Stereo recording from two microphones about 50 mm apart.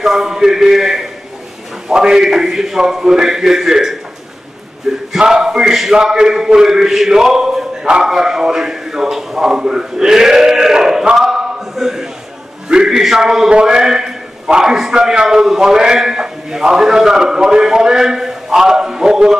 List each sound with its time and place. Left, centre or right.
0.0 s a man's voice: centre